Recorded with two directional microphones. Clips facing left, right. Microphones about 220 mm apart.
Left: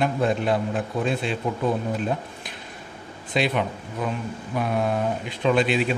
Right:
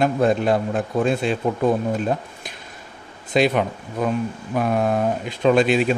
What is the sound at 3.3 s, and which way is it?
Speech, 45° right (ahead or behind).